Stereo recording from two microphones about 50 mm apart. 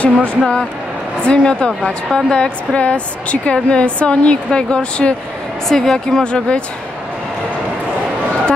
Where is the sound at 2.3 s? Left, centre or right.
Left.